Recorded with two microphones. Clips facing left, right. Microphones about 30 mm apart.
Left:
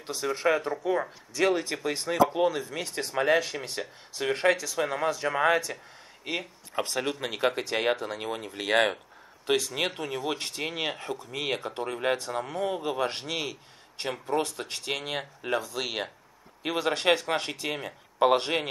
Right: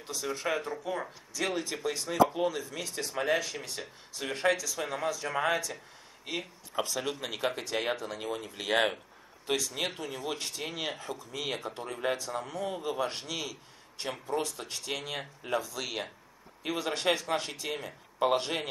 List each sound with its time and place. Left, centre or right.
0.0 s speech: left
2.6 s speech: left
6.7 s speech: left
7.0 s speech: left